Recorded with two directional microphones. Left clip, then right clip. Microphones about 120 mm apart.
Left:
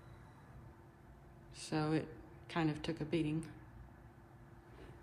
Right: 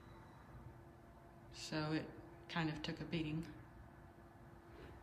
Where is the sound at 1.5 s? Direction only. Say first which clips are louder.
Left 5 dB; 10° right (ahead or behind).